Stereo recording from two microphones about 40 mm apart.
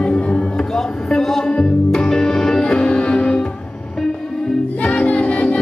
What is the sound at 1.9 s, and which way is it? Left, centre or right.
Music, centre.